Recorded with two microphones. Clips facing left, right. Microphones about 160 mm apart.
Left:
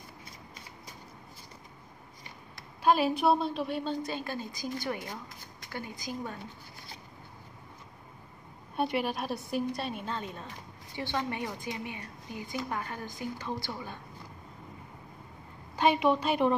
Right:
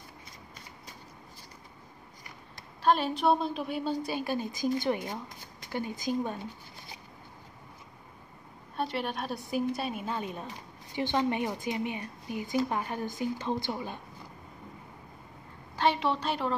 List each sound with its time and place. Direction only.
2.8 s a woman's voice: 10° left (ahead or behind); by 4.5 s 15° right (ahead or behind)
4.6 s a woman's voice: 25° right (ahead or behind)
8.7 s a woman's voice: 10° left (ahead or behind); by 13.9 s 20° right (ahead or behind)
15.7 s a woman's voice: 15° left (ahead or behind)